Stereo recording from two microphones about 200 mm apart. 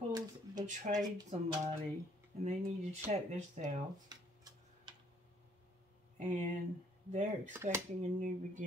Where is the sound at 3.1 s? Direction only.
35° right (ahead or behind).